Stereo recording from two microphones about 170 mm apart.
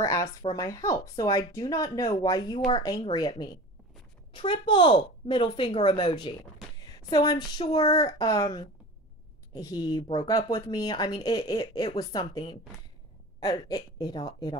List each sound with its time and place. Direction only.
0.0 s speech: 20° left (ahead or behind)